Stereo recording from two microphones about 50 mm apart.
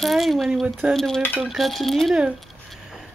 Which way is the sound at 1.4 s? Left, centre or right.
Centre.